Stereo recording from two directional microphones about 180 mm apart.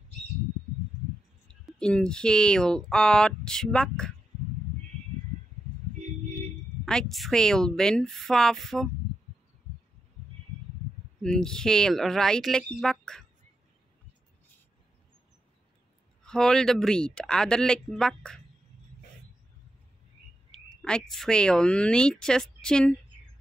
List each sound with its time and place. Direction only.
1.5 s speech: 5° left (ahead or behind)
6.8 s speech: centre (ahead or behind)
11.2 s speech: 5° left (ahead or behind)
16.3 s speech: 5° left (ahead or behind)
20.5 s a sound: 5° left (ahead or behind)
21.1 s speech: 5° left (ahead or behind)